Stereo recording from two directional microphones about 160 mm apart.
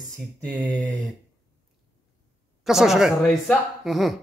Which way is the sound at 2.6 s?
Centre (ahead or behind).